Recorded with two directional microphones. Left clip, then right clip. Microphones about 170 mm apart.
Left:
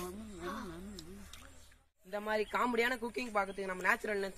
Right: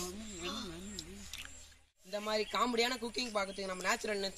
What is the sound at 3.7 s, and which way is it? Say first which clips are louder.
Speech: left 3 dB; centre (ahead or behind).